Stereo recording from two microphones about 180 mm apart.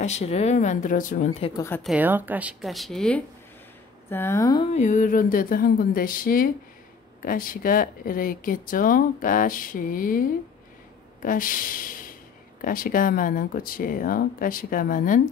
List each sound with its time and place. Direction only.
0.0 s speech: 35° left (ahead or behind)
1.8 s speech: 5° right (ahead or behind); by 4.6 s 20° left (ahead or behind)
4.6 s speech: 40° left (ahead or behind)
11.2 s speech: 50° left (ahead or behind)